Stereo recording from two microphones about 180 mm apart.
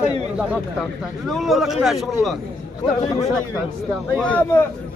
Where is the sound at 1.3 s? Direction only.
Centre (ahead or behind).